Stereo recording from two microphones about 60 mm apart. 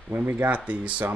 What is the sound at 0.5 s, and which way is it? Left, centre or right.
Speech, right.